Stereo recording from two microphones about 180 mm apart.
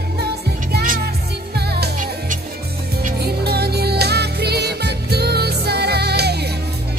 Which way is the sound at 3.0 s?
60° right (ahead or behind).